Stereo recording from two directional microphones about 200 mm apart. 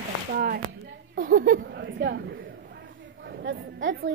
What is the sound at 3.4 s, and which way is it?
Speech, 70° right (ahead or behind).